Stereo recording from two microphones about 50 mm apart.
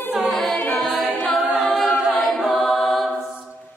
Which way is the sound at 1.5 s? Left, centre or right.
Centre.